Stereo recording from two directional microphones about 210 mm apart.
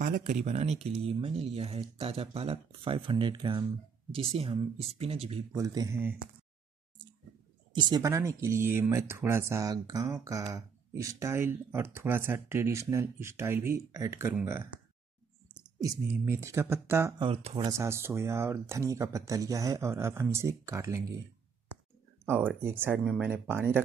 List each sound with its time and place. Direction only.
0.0 s speech: 40° right (ahead or behind)
5.5 s speech: 15° right (ahead or behind)
7.7 s speech: 20° right (ahead or behind)
17.2 s speech: 30° right (ahead or behind)
17.6 s speech: 15° right (ahead or behind)
22.2 s speech: 10° right (ahead or behind)